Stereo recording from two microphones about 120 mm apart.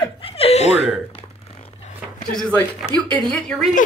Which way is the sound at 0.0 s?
55° left (ahead or behind).